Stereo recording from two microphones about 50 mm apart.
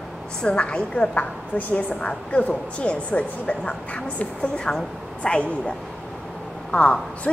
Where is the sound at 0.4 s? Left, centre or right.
Left.